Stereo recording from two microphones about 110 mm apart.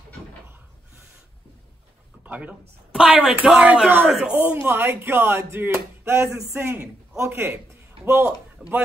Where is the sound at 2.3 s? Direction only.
10° right (ahead or behind).